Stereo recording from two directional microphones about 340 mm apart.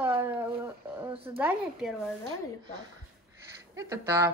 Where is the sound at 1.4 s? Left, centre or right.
Centre.